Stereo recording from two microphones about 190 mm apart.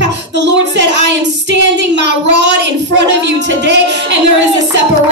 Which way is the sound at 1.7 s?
65° right (ahead or behind).